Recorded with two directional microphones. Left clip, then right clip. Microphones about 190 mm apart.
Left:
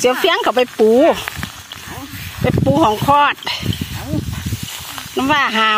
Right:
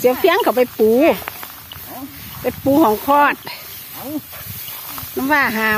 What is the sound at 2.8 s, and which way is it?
Speech, centre (ahead or behind).